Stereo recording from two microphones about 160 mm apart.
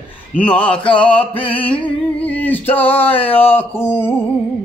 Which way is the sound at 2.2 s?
10° left (ahead or behind).